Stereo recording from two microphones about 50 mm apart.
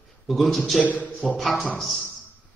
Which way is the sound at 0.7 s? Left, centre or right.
Left.